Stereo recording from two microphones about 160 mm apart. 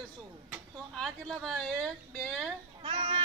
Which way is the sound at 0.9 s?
Centre (ahead or behind).